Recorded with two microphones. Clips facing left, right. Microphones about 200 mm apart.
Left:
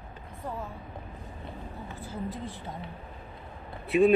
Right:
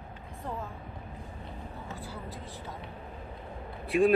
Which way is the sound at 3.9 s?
Centre (ahead or behind).